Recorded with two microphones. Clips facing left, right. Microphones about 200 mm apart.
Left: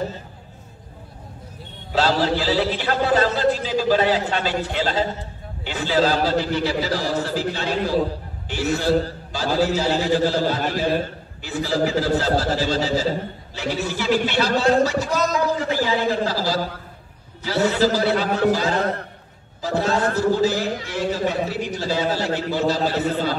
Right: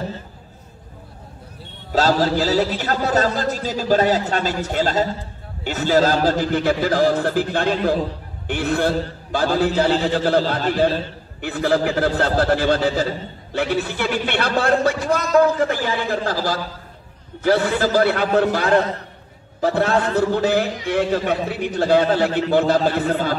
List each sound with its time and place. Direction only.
1.9 s a man's voice: 40° right (ahead or behind)
11.4 s a man's voice: 60° right (ahead or behind)